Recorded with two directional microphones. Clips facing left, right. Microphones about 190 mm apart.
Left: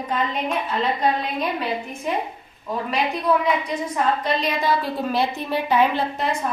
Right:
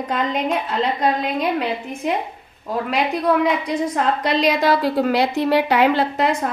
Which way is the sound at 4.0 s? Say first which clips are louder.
Right 1 dB; 90° right.